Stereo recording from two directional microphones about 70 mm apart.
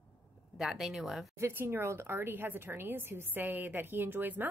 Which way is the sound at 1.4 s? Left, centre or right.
Right.